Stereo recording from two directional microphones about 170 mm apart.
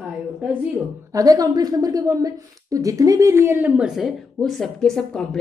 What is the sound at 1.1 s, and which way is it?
A woman's voice, 20° right (ahead or behind).